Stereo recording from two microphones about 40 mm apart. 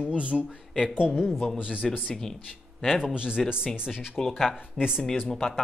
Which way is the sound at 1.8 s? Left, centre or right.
Centre.